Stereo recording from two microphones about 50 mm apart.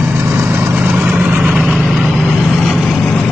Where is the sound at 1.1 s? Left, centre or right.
Right.